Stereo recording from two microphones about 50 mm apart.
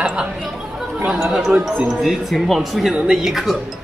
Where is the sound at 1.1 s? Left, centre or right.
Centre.